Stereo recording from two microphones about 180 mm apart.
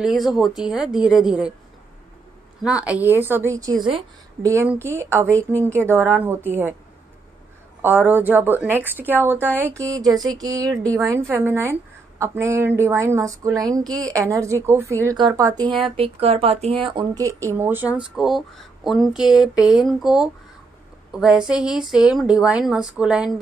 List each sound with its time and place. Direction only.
0.0 s a woman's voice: centre (ahead or behind)
2.6 s speech: 5° right (ahead or behind)
7.8 s a woman's voice: 10° right (ahead or behind)
15.8 s a woman's voice: 35° right (ahead or behind); by 23.3 s 5° right (ahead or behind)